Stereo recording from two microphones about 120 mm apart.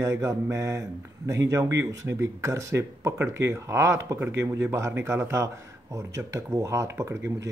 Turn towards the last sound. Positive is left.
turn(degrees=-25)  # may be behind; listen again after turning